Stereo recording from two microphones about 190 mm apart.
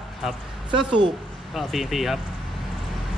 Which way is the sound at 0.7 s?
25° right (ahead or behind).